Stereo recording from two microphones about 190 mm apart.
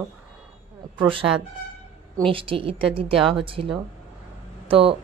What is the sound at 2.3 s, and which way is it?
A woman's voice, 25° right (ahead or behind).